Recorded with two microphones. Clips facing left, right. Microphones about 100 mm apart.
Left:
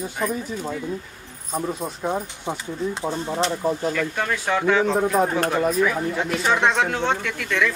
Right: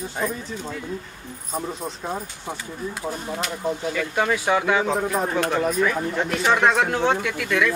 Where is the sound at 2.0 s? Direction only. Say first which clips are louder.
Left 6 dB; 20° left (ahead or behind).